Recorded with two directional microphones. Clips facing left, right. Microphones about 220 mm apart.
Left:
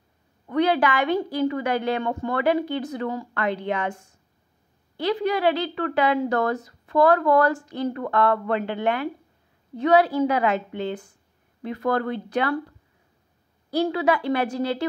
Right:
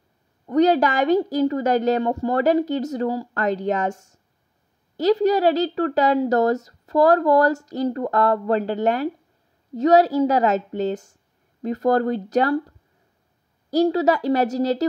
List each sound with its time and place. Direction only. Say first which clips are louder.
0.5 s a woman's voice: right 4 dB; 40° right (ahead or behind)